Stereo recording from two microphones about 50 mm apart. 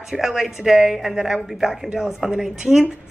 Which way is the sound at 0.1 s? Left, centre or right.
Centre.